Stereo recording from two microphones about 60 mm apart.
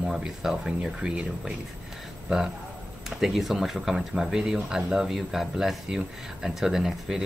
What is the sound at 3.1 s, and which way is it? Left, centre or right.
Speech, centre.